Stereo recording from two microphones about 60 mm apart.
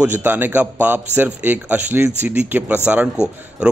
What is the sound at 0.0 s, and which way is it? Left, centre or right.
A man's voice, right.